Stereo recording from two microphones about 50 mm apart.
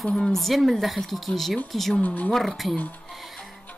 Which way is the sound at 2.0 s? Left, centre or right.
Left.